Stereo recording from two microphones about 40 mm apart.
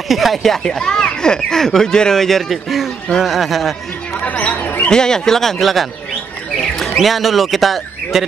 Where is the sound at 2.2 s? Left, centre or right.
Centre.